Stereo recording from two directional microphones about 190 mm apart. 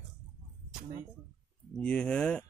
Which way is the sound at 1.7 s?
5° left (ahead or behind).